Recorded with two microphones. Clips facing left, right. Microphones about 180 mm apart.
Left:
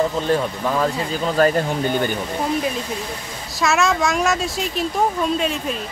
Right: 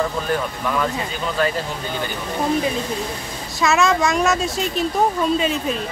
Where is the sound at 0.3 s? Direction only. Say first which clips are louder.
Left 3 dB; 30° left (ahead or behind).